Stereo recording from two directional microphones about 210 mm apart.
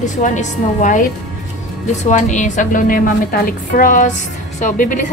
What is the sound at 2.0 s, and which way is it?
A woman's voice, 35° left (ahead or behind).